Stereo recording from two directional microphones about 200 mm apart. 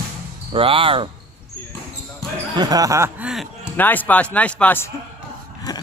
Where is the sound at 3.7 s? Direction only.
10° left (ahead or behind).